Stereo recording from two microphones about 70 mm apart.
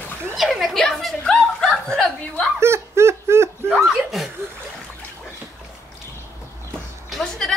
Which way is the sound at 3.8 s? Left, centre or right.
Centre.